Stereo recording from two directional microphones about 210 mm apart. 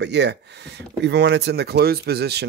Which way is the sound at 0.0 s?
55° right (ahead or behind).